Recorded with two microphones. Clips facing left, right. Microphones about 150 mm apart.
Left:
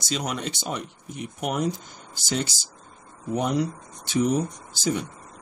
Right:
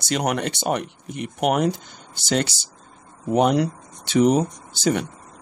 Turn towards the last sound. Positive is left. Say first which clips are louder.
# right 5 dB
turn(degrees=-70)  # may be behind; listen again after turning